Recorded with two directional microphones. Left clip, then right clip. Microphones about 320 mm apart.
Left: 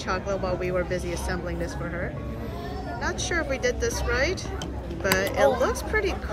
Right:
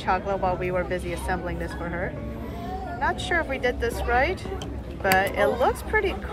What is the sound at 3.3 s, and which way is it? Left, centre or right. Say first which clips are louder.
Speech: right 1 dB; centre.